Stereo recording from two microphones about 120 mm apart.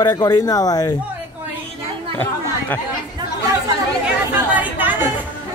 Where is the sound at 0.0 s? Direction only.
30° left (ahead or behind).